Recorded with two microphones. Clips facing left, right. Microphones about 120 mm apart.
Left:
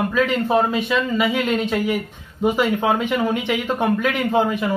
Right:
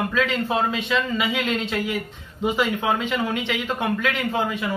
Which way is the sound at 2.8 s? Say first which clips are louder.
Left 4 dB; 15° left (ahead or behind).